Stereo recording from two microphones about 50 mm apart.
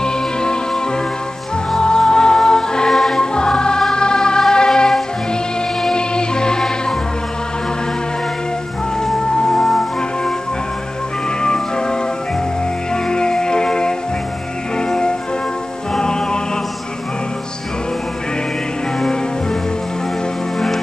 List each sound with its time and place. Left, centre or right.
0.0 s music: centre
1.7 s music: centre
9.0 s music: centre
11.4 s music: centre
20.5 s music: centre